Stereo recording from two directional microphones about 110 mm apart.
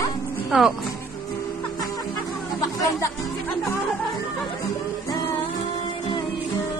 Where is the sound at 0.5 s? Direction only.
5° right (ahead or behind).